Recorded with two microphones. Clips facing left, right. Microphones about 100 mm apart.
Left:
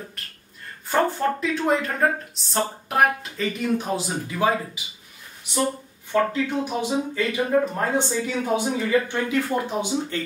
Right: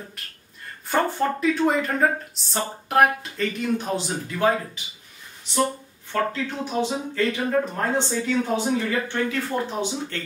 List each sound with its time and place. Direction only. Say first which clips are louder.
0.2 s speech: even; centre (ahead or behind); by 10.2 s 15° left (ahead or behind)